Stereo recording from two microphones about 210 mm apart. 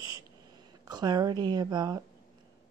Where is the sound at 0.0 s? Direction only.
20° right (ahead or behind).